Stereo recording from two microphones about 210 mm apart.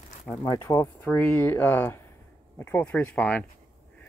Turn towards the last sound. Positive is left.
turn(degrees=5)  # may be behind; listen again after turning